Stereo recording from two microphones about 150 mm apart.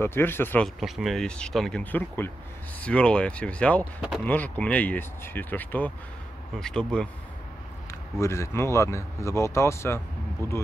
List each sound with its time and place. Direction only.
0.0 s speech: 15° left (ahead or behind)
0.7 s speech: centre (ahead or behind)
8.2 s speech: 20° left (ahead or behind)